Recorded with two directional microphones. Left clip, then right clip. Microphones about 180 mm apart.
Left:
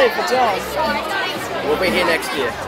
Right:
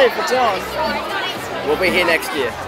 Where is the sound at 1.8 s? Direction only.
50° left (ahead or behind).